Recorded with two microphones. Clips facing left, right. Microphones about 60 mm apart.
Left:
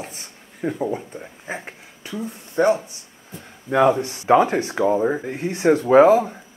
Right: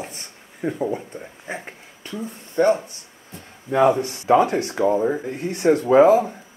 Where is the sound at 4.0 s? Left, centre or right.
Left.